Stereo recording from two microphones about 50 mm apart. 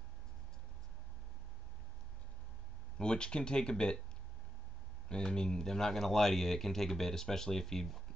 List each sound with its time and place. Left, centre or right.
3.0 s speech: centre
5.0 s speech: centre